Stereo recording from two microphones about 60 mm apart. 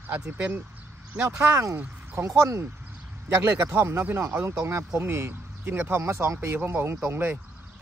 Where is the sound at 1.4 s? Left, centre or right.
Right.